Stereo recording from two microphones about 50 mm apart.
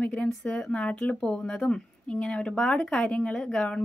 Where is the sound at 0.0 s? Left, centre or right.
Left.